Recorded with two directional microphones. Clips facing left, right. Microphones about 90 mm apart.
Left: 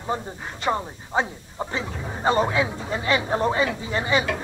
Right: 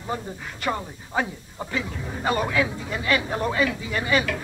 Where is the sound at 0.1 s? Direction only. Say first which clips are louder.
Left 1 dB; 25° left (ahead or behind).